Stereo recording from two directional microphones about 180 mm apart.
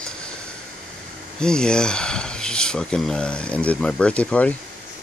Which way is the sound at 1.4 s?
5° left (ahead or behind).